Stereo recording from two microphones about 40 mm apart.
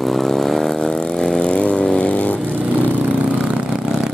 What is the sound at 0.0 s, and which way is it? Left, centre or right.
Chainsaw, centre.